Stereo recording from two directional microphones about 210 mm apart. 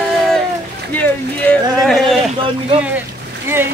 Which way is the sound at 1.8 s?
Centre (ahead or behind).